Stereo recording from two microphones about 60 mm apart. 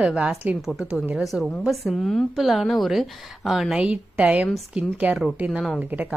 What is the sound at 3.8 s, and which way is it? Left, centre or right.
Speech, centre.